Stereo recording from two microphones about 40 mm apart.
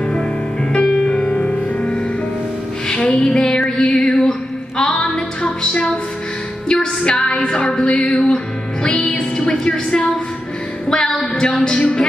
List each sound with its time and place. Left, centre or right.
0.0 s music: left
3.2 s a sound: centre
5.0 s music: left